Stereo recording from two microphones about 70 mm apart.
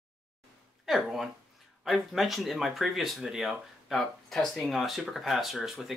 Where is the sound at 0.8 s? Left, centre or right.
Centre.